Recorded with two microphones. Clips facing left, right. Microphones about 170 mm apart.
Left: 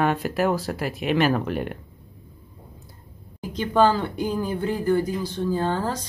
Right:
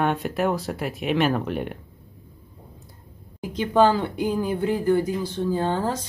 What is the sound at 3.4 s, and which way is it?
Speech, 15° right (ahead or behind).